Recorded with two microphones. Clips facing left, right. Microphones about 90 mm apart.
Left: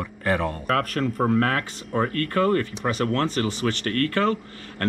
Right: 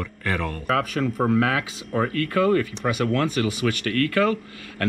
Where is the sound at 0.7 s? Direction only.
Centre (ahead or behind).